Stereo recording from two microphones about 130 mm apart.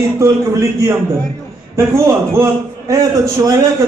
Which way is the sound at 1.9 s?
20° right (ahead or behind).